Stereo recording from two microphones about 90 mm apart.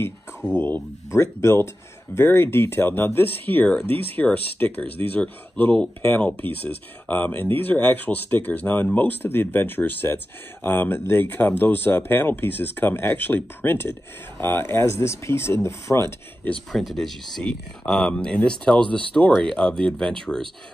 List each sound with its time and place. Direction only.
0.6 s speech: 25° left (ahead or behind)
16.7 s speech: centre (ahead or behind)